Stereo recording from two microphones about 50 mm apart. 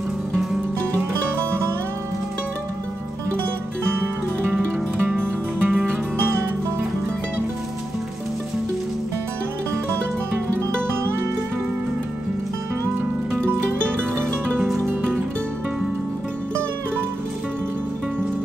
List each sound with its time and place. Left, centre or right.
3.9 s music: right
14.9 s music: right